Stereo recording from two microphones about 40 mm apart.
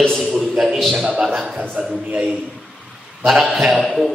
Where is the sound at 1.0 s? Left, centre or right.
Right.